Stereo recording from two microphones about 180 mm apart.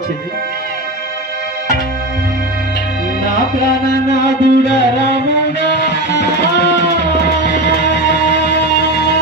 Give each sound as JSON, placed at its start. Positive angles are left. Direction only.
{"t": 4.2, "sound": "music", "side_deg": 65}